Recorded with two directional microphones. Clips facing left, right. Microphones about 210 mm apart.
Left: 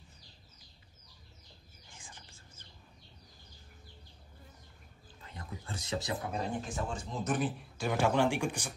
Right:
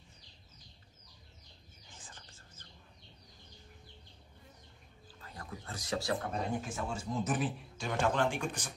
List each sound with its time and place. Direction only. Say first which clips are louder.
2.0 s whispering: left 1 dB; 10° left (ahead or behind)
5.2 s a sound: even; 20° left (ahead or behind)
6.3 s speech: even; centre (ahead or behind)